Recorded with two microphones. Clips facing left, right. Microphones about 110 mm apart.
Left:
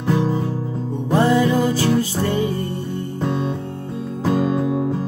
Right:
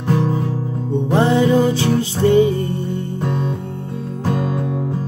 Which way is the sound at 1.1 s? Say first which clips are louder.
Right 2 dB; 25° right (ahead or behind).